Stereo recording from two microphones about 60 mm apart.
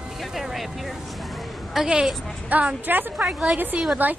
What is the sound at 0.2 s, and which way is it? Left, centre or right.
Speech, centre.